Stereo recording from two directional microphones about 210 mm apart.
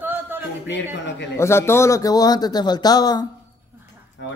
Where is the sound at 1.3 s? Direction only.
10° left (ahead or behind).